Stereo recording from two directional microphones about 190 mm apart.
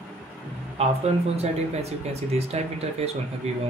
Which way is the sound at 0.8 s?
35° right (ahead or behind).